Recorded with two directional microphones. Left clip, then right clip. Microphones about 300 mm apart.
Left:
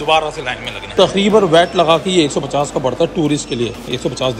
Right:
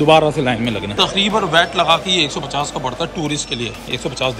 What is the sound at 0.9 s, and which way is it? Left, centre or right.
A man's voice, centre.